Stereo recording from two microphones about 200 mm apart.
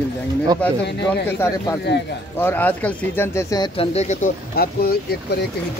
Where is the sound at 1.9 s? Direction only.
60° left (ahead or behind).